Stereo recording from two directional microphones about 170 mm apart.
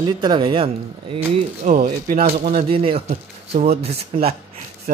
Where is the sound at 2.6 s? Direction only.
30° right (ahead or behind).